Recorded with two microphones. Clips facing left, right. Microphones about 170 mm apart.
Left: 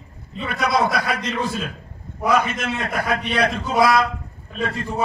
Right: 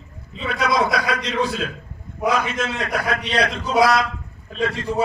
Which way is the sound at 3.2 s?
75° right (ahead or behind).